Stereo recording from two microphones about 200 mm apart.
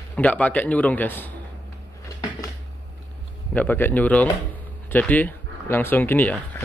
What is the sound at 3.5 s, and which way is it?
Speech, 10° left (ahead or behind).